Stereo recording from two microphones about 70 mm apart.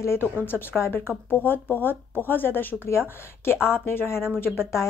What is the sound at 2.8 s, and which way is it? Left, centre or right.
Speech, left.